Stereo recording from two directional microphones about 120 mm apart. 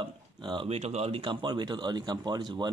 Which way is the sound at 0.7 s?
65° right (ahead or behind).